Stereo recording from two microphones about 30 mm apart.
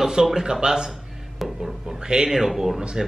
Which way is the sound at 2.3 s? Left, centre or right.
Centre.